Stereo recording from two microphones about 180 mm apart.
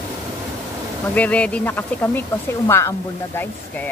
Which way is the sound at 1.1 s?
5° left (ahead or behind).